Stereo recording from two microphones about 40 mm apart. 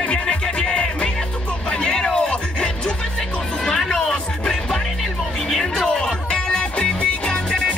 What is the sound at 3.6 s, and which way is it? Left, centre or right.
Music, centre.